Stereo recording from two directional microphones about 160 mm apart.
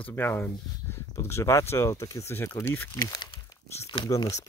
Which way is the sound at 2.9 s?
25° left (ahead or behind).